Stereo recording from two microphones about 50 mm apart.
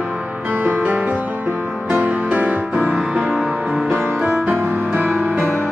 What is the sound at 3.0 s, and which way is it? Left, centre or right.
Music, centre.